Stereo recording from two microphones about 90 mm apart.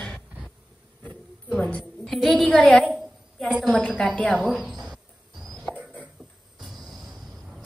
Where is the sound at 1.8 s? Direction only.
Centre (ahead or behind).